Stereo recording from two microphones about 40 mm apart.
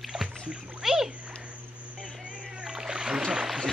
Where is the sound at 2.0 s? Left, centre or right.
Centre.